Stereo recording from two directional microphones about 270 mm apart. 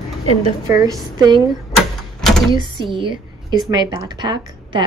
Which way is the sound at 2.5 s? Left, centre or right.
Centre.